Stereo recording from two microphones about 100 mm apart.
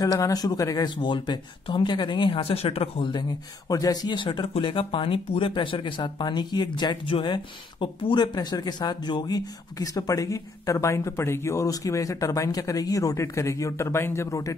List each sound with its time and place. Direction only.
0.0 s speech: 35° left (ahead or behind)
0.8 s speech: 50° left (ahead or behind); by 3.1 s 75° left (ahead or behind)
3.1 s speech: 45° left (ahead or behind)